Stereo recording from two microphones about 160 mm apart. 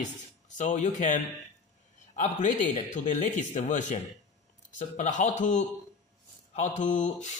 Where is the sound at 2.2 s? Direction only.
50° left (ahead or behind).